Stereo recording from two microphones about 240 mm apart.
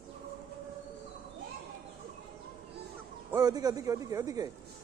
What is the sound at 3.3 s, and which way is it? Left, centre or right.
A man's voice, centre.